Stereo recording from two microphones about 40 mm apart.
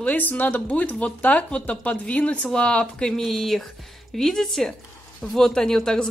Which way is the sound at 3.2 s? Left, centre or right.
Centre.